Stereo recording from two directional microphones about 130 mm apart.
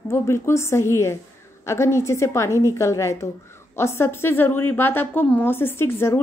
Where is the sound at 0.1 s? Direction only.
20° left (ahead or behind).